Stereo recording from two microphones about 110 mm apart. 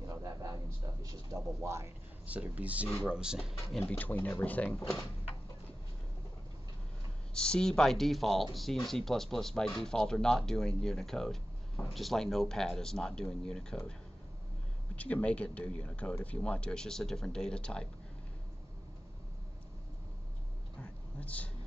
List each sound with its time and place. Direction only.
0.0 s a sound: 35° right (ahead or behind)
1.0 s speech: 30° right (ahead or behind)
2.2 s speech: 15° right (ahead or behind)
3.9 s speech: 15° left (ahead or behind)
7.3 s speech: 5° left (ahead or behind)
15.0 s speech: 10° left (ahead or behind)
20.8 s a sound: 15° left (ahead or behind)